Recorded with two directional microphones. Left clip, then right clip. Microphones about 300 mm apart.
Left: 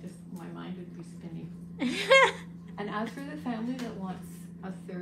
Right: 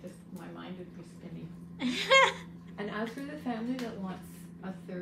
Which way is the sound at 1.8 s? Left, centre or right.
Centre.